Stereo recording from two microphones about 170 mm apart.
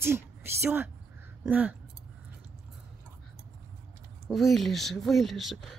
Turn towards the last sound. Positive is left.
turn(degrees=0)  # may be behind; listen again after turning